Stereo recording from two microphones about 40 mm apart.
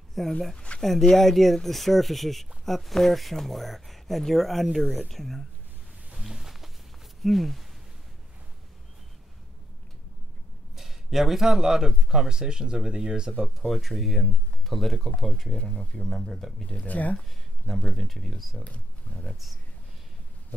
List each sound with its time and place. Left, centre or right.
0.2 s speech: centre
6.1 s a sound: centre
7.2 s speech: centre
10.8 s speech: centre
13.6 s speech: centre
15.5 s speech: centre
16.0 s speech: centre
16.8 s speech: left
17.9 s speech: centre
18.6 s speech: left
19.2 s speech: centre